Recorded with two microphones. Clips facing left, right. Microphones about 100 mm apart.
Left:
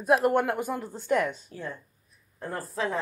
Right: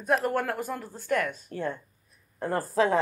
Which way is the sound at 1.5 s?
65° right (ahead or behind).